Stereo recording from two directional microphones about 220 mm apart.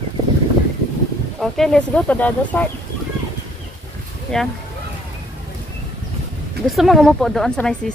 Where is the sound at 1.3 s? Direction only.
Centre (ahead or behind).